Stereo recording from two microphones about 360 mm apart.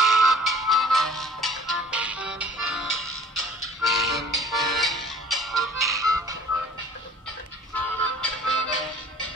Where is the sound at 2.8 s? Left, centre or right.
Left.